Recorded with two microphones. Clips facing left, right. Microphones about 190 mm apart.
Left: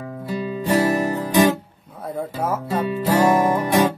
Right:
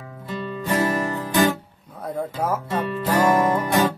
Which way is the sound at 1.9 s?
5° left (ahead or behind).